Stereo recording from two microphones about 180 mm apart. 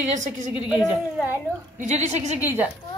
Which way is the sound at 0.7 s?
5° right (ahead or behind).